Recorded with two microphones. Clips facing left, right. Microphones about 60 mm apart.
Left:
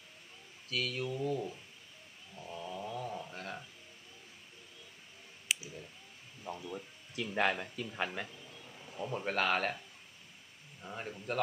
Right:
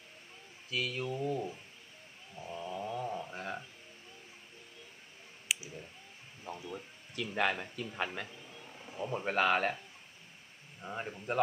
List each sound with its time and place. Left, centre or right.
0.7 s speech: centre
1.1 s a man's voice: right
2.3 s a sound: centre
5.5 s clicking: centre
6.5 s music: right
7.2 s speech: centre
8.3 s a sound: centre
8.7 s speech: centre
10.8 s a man's voice: centre